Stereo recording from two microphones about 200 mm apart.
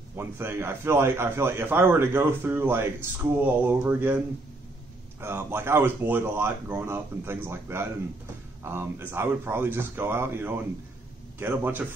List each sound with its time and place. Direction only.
0.1 s a man's voice: 10° right (ahead or behind)
5.2 s a man's voice: 10° right (ahead or behind)